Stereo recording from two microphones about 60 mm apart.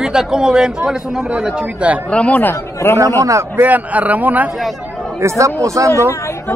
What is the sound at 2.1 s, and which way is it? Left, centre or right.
Speech, centre.